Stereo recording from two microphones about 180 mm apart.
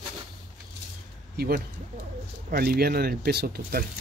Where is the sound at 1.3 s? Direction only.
55° right (ahead or behind).